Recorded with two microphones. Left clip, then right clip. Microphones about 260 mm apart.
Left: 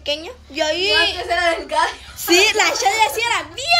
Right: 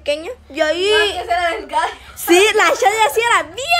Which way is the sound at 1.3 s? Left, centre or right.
Right.